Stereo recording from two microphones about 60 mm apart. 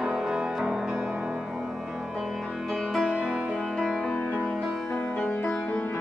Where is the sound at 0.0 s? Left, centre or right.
Centre.